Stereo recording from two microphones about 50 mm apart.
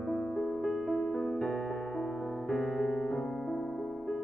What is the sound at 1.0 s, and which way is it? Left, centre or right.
Keyboard, centre.